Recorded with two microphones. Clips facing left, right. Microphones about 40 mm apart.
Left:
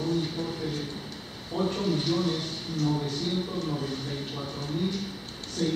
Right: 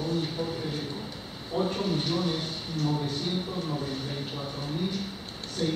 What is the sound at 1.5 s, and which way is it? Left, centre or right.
A man's voice, centre.